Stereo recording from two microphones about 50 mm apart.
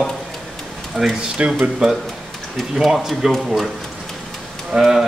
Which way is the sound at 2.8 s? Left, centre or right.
Centre.